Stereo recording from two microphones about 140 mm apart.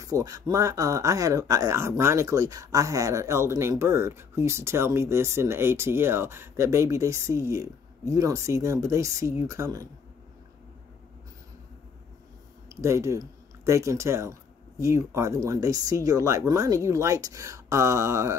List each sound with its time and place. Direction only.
0.0 s speech: 25° right (ahead or behind)
12.6 s speech: 20° right (ahead or behind)